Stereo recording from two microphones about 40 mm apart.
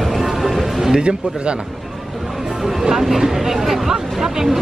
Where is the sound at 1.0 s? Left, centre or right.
Right.